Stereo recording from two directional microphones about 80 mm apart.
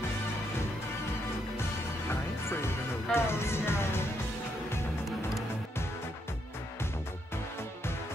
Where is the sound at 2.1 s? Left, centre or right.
Left.